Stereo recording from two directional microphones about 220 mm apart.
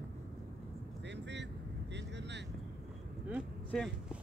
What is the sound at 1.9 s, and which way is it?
Vehicle, 50° right (ahead or behind).